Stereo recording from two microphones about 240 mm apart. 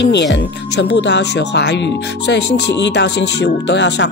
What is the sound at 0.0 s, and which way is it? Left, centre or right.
Speech, left.